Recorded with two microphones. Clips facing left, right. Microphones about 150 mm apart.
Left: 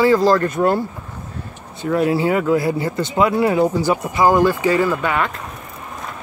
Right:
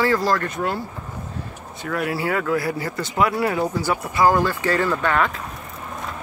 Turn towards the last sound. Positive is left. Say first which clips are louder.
# left 1 dB
turn(degrees=5)  # may be behind; listen again after turning